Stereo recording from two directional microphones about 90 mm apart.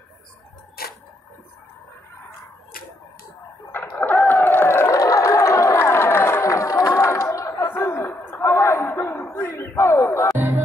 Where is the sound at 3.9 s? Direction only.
20° left (ahead or behind).